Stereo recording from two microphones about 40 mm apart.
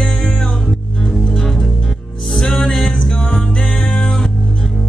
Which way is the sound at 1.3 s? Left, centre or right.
Centre.